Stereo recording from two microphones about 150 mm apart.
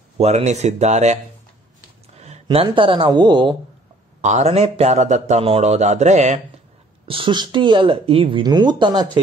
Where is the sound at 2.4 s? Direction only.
35° right (ahead or behind).